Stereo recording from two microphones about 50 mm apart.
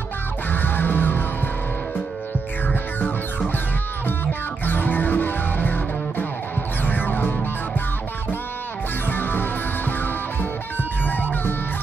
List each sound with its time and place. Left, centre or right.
0.5 s music: left
2.7 s music: left
9.1 s music: left
11.1 s music: left